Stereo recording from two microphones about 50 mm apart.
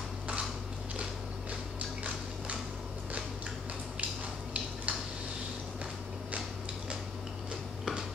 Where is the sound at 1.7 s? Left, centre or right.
Right.